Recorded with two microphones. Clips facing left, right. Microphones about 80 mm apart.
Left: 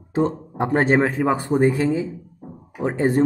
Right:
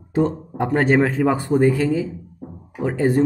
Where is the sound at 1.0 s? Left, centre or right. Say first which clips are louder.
Right 1 dB; centre.